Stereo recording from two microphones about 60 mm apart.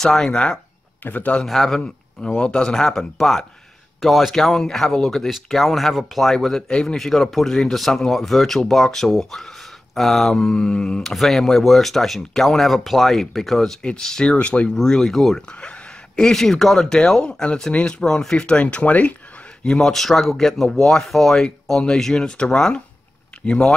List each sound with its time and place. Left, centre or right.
0.0 s speech: centre
1.0 s a man's voice: left
1.4 s speech: centre
14.7 s speech: centre
15.4 s a man's voice: centre
19.6 s speech: centre